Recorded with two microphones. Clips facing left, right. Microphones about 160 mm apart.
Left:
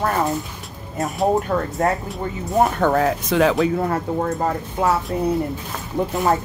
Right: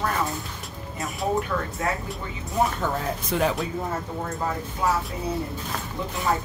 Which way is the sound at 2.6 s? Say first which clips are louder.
Left 7 dB; 65° left (ahead or behind).